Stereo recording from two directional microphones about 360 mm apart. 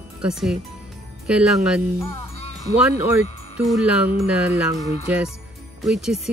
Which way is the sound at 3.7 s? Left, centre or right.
Centre.